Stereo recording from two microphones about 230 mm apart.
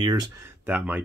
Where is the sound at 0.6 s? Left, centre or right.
Centre.